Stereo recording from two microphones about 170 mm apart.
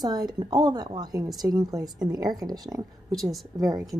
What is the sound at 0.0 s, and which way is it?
A woman's voice, 25° right (ahead or behind).